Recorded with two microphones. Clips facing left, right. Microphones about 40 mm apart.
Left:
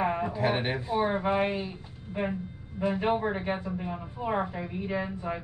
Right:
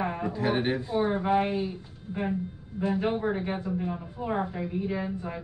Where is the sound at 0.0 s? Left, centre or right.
Centre.